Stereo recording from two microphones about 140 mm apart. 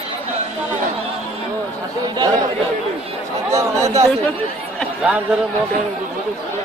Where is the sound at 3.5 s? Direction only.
25° right (ahead or behind).